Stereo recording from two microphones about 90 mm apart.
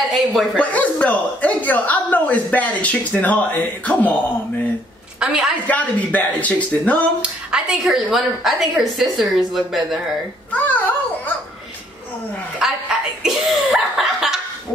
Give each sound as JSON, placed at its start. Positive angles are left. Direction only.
{"t": 0.1, "sound": "a woman's voice", "side_deg": 0}
{"t": 0.6, "sound": "a woman's voice", "side_deg": 15}
{"t": 5.2, "sound": "a woman's voice", "side_deg": -10}
{"t": 5.7, "sound": "a woman's voice", "side_deg": 15}
{"t": 7.2, "sound": "a woman's voice", "side_deg": -10}
{"t": 10.5, "sound": "babbling", "side_deg": 20}
{"t": 12.6, "sound": "a woman's voice", "side_deg": -5}